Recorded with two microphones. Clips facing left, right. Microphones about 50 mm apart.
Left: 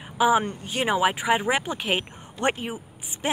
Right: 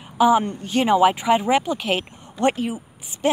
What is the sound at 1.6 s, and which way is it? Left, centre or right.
Speech, left.